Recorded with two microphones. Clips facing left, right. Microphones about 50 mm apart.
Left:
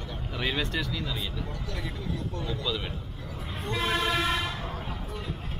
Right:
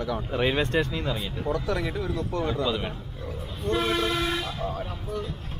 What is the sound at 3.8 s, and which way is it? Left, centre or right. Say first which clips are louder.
Speech: right 1 dB; left.